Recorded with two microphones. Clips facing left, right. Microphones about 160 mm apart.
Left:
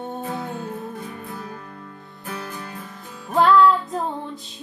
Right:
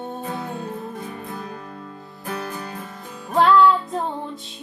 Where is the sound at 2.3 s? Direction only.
45° right (ahead or behind).